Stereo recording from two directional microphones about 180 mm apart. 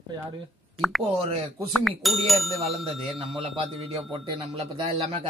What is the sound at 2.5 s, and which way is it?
Speech, 35° right (ahead or behind).